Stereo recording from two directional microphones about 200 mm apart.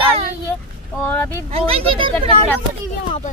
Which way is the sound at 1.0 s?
10° left (ahead or behind).